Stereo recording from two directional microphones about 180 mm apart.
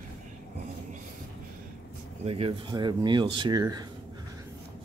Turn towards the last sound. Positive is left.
turn(degrees=-20)  # may be behind; listen again after turning